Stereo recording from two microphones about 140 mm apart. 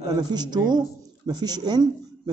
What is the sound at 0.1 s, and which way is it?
A woman's voice, 30° right (ahead or behind).